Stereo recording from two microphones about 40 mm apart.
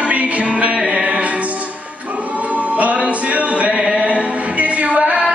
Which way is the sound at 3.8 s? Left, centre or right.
Right.